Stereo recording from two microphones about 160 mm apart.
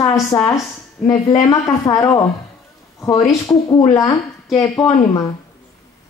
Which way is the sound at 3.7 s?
25° left (ahead or behind).